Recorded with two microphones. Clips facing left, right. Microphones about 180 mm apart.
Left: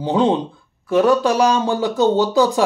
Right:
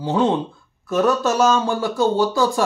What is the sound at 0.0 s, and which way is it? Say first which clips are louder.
Speech: left 2 dB; 15° left (ahead or behind).